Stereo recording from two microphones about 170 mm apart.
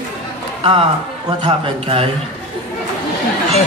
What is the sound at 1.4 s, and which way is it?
Speech, 35° right (ahead or behind).